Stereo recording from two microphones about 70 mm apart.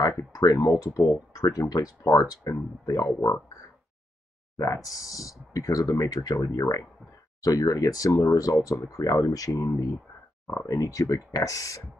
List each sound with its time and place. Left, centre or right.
0.3 s speech: left
4.8 s speech: left